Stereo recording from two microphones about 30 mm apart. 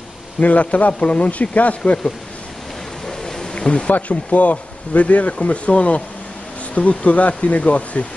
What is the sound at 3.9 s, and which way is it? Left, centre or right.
Speech, left.